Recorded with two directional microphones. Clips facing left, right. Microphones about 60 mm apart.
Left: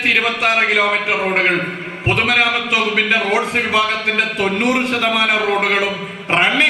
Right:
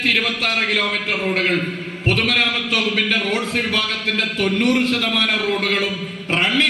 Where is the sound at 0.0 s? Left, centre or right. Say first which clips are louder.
Left 4 dB; centre.